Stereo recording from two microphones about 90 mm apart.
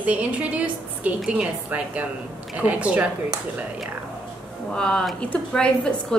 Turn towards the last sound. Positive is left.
turn(degrees=10)  # may be behind; listen again after turning